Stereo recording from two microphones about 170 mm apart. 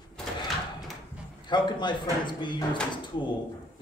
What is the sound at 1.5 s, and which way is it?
Speech, 25° left (ahead or behind).